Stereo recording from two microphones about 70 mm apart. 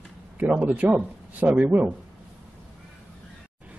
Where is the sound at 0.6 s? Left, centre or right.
Right.